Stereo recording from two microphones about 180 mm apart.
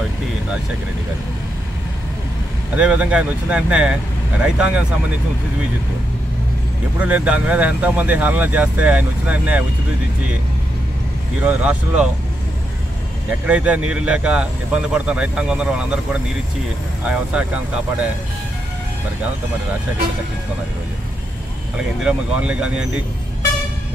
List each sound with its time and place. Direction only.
2.7 s speech: 5° right (ahead or behind)
7.0 s speech: 5° right (ahead or behind)
11.4 s speech: 5° right (ahead or behind)
13.3 s speech: 5° right (ahead or behind)
22.0 s speech: 5° right (ahead or behind)